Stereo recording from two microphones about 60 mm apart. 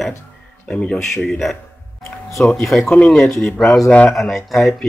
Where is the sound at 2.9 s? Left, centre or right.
Left.